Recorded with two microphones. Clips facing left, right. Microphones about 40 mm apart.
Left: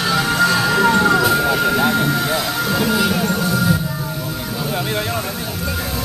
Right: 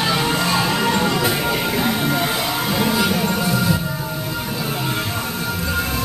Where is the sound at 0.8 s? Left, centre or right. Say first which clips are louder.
Left 5 dB; left.